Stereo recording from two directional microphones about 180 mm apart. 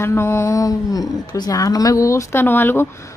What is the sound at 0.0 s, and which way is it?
Speech, 15° left (ahead or behind).